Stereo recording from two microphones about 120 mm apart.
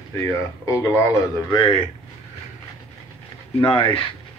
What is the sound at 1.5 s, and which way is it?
Speech, 50° left (ahead or behind).